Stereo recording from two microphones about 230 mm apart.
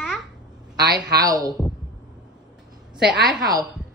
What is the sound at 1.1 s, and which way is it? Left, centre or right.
Speech, centre.